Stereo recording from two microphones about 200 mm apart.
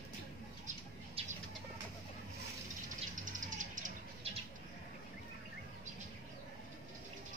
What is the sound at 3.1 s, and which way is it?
Music, 40° right (ahead or behind).